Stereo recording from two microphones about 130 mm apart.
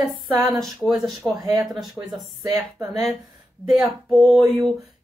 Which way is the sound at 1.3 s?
30° right (ahead or behind).